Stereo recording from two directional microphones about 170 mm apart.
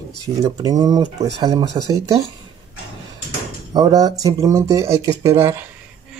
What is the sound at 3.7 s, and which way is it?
Speech, 20° right (ahead or behind).